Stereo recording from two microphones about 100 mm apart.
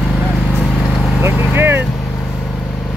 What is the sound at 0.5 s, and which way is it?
Vehicle, 10° left (ahead or behind).